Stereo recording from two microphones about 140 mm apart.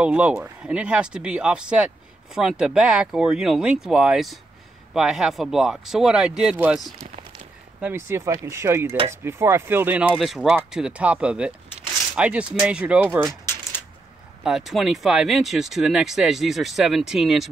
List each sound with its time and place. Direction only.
0.0 s speech: 10° right (ahead or behind)
7.8 s speech: 20° right (ahead or behind)
10.1 s speech: centre (ahead or behind); by 13.4 s 15° right (ahead or behind)
14.4 s speech: centre (ahead or behind)